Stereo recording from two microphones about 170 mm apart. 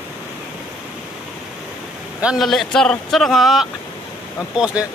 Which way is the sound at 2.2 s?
5° right (ahead or behind).